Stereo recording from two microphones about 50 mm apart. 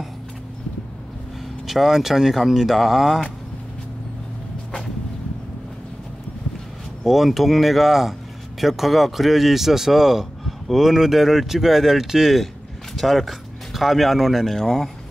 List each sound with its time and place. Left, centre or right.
1.7 s speech: centre
7.1 s speech: centre